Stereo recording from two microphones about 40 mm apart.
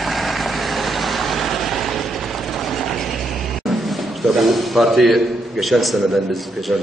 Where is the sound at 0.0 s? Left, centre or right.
Centre.